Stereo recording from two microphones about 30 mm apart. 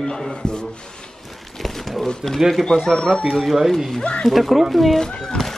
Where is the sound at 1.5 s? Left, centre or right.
Centre.